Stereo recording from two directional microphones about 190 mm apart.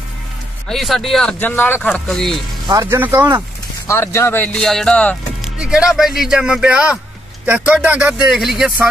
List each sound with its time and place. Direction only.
0.7 s speech: centre (ahead or behind)
2.7 s speech: 15° right (ahead or behind)
3.8 s speech: 15° left (ahead or behind); by 8.8 s centre (ahead or behind)